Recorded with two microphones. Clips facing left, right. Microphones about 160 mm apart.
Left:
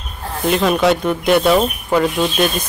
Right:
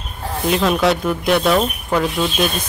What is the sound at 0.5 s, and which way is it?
Speech, centre (ahead or behind).